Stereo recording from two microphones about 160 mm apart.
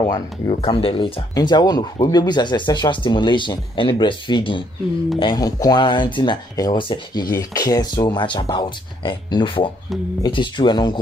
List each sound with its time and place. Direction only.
0.5 s speech: 35° left (ahead or behind)